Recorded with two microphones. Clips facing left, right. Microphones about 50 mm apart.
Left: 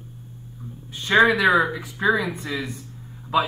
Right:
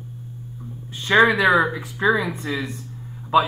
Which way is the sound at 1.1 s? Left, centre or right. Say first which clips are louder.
Right 1 dB; centre.